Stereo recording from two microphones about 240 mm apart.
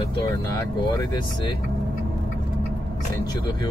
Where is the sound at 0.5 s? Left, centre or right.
Centre.